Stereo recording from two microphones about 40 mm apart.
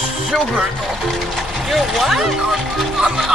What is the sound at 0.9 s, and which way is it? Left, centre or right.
Speech, centre.